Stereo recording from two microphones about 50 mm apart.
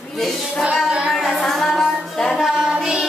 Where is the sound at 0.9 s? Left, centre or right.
Right.